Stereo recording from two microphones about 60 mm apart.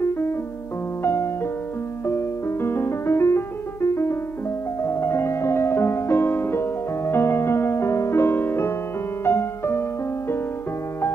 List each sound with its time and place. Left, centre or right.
0.0 s music: left